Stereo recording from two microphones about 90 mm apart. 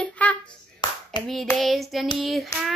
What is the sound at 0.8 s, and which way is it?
Clapping, 60° left (ahead or behind).